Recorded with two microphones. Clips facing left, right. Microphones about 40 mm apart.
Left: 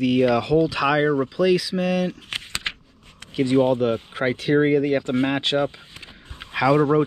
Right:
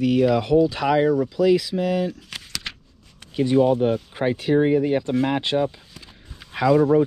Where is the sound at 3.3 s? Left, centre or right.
Left.